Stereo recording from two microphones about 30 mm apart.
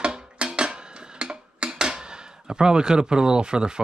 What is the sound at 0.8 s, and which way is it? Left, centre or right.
Speech, right.